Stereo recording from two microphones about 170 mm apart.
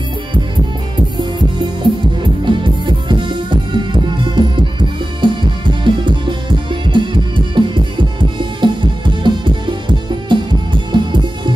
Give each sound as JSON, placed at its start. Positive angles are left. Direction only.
{"t": 1.8, "sound": "music", "side_deg": -30}